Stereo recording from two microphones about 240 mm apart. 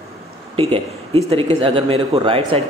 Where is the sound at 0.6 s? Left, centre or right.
Right.